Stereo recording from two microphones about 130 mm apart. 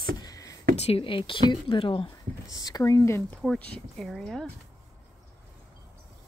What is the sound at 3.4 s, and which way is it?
Speech, 5° left (ahead or behind).